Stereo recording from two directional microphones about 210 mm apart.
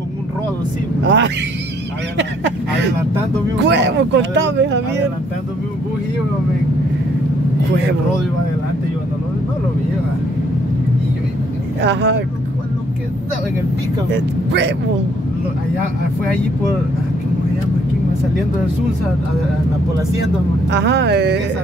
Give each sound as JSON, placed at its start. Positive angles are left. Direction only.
{"t": 1.0, "sound": "speech", "side_deg": -55}
{"t": 11.8, "sound": "speech", "side_deg": -55}
{"t": 14.1, "sound": "speech", "side_deg": -55}
{"t": 20.7, "sound": "speech", "side_deg": -55}